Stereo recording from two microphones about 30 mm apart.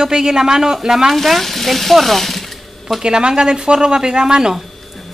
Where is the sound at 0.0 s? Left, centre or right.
Centre.